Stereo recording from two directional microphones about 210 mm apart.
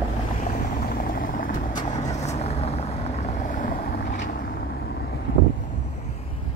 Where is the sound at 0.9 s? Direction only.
45° left (ahead or behind).